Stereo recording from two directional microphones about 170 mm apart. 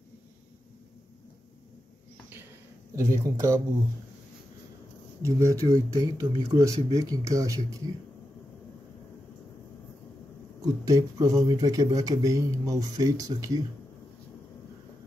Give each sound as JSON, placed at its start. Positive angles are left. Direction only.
{"t": 3.0, "sound": "speech", "side_deg": -15}
{"t": 5.2, "sound": "speech", "side_deg": -20}
{"t": 10.6, "sound": "speech", "side_deg": -20}